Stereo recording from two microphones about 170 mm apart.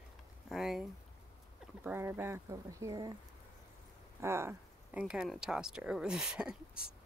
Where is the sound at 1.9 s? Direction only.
15° right (ahead or behind).